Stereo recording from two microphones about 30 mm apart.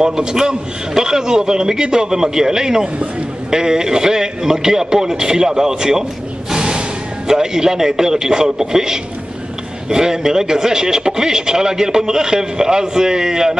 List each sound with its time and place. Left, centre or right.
0.0 s a man's voice: right
6.5 s music: right
7.2 s a man's voice: right